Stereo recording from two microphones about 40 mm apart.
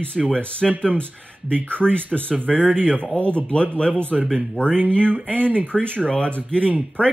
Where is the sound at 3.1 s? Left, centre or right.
Left.